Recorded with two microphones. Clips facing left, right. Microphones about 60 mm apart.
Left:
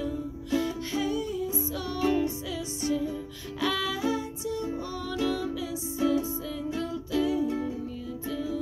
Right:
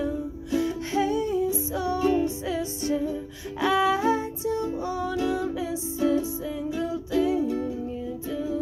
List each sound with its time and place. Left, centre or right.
0.0 s music: right
4.8 s music: centre
6.7 s music: centre